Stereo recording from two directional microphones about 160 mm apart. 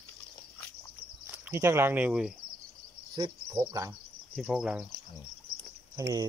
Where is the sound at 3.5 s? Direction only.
20° right (ahead or behind).